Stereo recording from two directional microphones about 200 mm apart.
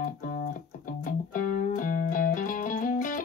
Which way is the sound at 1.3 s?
40° left (ahead or behind).